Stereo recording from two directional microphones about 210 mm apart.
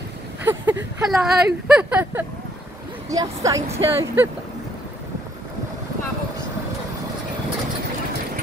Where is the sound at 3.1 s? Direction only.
15° right (ahead or behind).